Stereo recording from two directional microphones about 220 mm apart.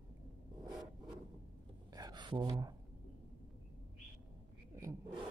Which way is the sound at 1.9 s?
20° right (ahead or behind).